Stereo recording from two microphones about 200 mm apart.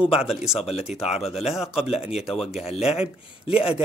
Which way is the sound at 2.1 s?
Centre (ahead or behind).